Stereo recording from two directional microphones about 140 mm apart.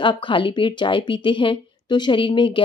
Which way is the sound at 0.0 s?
35° left (ahead or behind).